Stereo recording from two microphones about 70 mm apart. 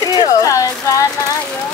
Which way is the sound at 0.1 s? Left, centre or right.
Left.